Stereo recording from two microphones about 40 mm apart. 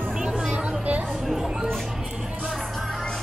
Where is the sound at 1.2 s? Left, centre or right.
Centre.